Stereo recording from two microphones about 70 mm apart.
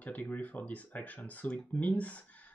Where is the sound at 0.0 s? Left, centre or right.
Left.